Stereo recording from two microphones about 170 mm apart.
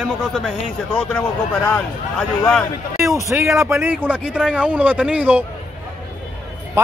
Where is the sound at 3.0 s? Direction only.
20° right (ahead or behind).